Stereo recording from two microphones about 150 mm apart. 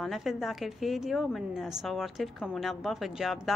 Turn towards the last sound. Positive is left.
turn(degrees=-5)  # may be behind; listen again after turning